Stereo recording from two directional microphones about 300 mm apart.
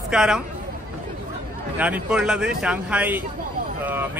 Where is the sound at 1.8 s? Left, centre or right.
Centre.